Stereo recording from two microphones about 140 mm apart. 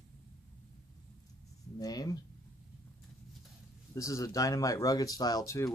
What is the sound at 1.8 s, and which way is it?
Speech, 25° left (ahead or behind).